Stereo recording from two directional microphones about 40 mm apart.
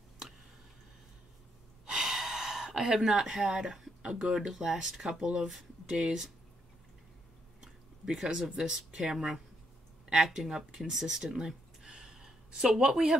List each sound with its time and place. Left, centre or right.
1.9 s a sound: centre
3.0 s speech: centre
5.2 s speech: right
7.6 s speech: centre
11.9 s gasp: centre
12.5 s speech: centre